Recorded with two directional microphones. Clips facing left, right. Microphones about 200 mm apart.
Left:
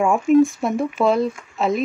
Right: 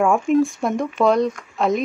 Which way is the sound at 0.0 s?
Centre (ahead or behind).